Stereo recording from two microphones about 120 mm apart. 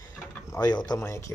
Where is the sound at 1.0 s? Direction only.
25° left (ahead or behind).